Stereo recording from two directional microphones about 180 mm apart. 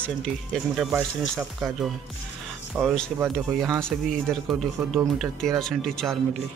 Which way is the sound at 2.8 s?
Centre (ahead or behind).